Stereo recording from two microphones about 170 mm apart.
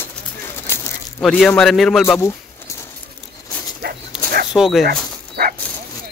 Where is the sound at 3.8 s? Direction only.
70° right (ahead or behind).